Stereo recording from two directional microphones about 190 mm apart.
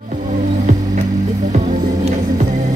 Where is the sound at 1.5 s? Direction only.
40° right (ahead or behind).